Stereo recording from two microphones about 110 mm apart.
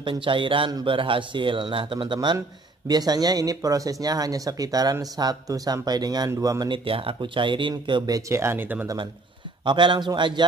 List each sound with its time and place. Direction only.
0.0 s speech: 50° right (ahead or behind)
2.9 s speech: 35° right (ahead or behind)
6.7 s speech: 55° right (ahead or behind)
8.3 s speech: 25° right (ahead or behind)
8.8 s speech: 45° right (ahead or behind)